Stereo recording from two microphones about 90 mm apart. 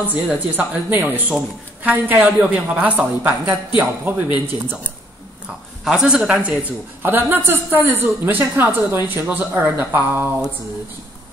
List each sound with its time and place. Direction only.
0.3 s a woman's voice: 20° right (ahead or behind)
5.9 s a woman's voice: 5° right (ahead or behind)